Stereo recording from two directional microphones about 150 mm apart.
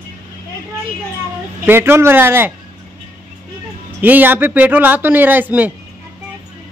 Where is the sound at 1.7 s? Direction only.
15° right (ahead or behind).